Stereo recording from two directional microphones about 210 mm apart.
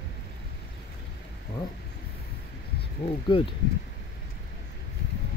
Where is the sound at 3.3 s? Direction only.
25° left (ahead or behind).